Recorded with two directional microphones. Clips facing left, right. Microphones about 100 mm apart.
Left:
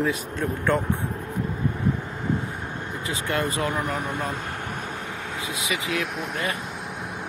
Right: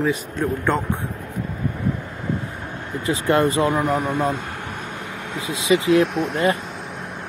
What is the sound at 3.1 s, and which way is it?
Speech, 30° right (ahead or behind).